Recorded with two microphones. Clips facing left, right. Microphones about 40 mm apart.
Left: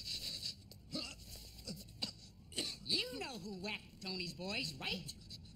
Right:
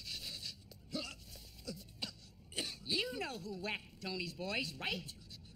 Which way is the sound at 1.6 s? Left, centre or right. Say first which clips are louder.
Right 2 dB; centre.